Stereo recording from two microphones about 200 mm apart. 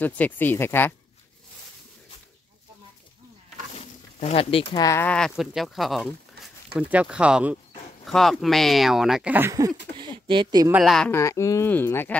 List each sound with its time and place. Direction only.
0.0 s speech: 10° left (ahead or behind)
3.7 s a sound: 30° left (ahead or behind)
4.8 s speech: 10° left (ahead or behind); by 9.7 s 15° right (ahead or behind)
9.9 s speech: 25° right (ahead or behind)
10.7 s speech: centre (ahead or behind)
11.1 s speech: 15° left (ahead or behind)